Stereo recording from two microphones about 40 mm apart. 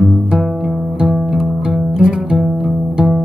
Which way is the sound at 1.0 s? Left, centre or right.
Centre.